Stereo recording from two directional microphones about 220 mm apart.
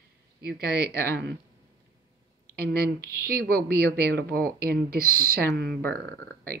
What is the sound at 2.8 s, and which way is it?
Speech, 45° right (ahead or behind).